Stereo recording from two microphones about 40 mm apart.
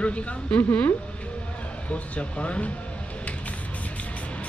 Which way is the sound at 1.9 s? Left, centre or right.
Left.